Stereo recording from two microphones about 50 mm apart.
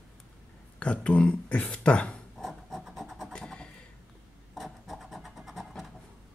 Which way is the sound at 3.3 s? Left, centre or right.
Centre.